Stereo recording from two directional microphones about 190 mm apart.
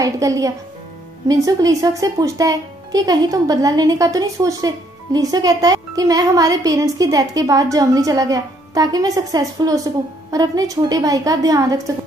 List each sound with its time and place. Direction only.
0.0 s a woman's voice: 15° right (ahead or behind)